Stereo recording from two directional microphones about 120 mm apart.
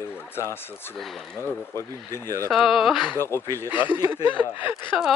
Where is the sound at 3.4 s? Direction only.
30° right (ahead or behind).